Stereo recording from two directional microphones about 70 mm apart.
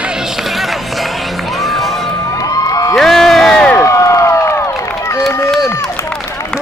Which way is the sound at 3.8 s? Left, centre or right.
Left.